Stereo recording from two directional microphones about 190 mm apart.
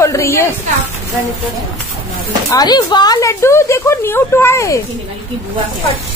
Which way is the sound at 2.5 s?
20° left (ahead or behind).